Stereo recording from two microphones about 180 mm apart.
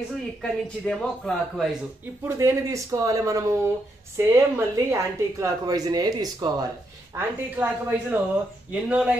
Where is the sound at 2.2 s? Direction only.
15° right (ahead or behind).